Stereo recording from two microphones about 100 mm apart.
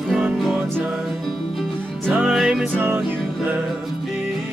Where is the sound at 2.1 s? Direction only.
5° right (ahead or behind).